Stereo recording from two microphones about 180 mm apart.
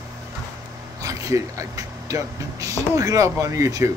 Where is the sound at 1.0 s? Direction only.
20° right (ahead or behind).